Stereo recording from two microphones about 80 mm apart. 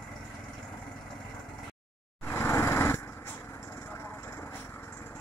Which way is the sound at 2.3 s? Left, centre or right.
Left.